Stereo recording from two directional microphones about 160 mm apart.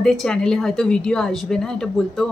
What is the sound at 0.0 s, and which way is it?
Speech, 5° left (ahead or behind).